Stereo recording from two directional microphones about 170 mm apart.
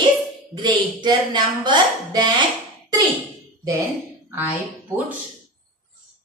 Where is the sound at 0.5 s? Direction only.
25° right (ahead or behind).